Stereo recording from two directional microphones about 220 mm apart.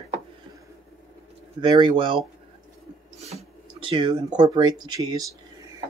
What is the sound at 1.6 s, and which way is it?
Speech, 20° right (ahead or behind).